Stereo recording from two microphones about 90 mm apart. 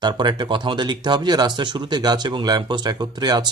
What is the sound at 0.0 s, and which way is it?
A man's voice, 55° right (ahead or behind).